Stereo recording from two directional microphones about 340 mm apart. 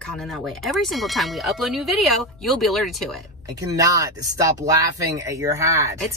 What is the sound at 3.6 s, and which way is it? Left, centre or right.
Speech, centre.